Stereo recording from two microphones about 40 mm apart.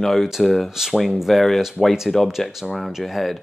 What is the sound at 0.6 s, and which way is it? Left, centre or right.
Speech, centre.